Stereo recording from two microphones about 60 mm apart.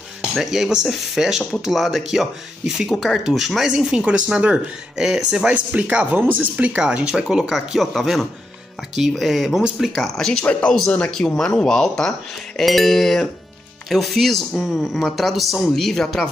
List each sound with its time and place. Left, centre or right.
0.3 s speech: centre
5.5 s speech: right; by 10.4 s centre
10.4 s speech: left
11.1 s speech: centre